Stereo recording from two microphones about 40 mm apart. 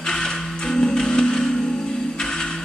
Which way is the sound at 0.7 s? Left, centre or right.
Centre.